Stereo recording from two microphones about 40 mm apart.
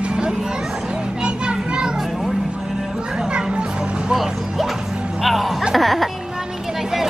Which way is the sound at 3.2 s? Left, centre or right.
Right.